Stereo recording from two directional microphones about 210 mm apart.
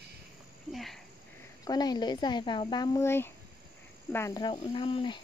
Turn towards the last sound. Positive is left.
turn(degrees=25)  # may be behind; listen again after turning